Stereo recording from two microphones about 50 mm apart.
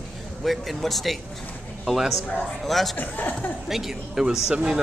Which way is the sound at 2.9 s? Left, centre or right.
Left.